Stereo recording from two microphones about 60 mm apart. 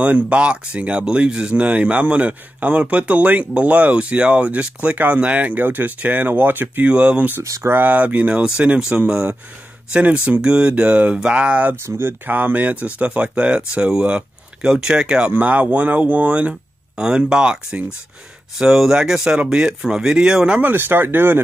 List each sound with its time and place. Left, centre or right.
0.0 s speech: right
6.9 s speech: centre
7.6 s speech: right
12.0 s speech: right; by 15.3 s centre
15.3 s speech: right
20.6 s speech: right